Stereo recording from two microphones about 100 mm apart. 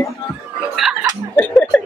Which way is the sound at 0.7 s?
5° right (ahead or behind).